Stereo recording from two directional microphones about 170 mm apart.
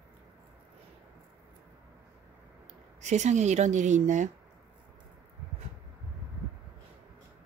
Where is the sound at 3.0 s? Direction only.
45° right (ahead or behind).